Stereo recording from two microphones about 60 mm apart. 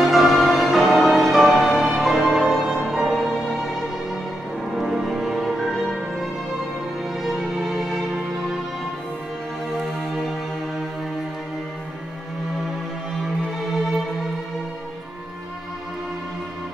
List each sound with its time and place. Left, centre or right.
0.0 s music: centre
7.2 s music: centre